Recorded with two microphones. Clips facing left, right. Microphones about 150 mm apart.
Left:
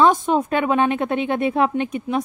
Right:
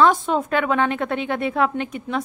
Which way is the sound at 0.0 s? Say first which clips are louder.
Left 1 dB; 20° left (ahead or behind).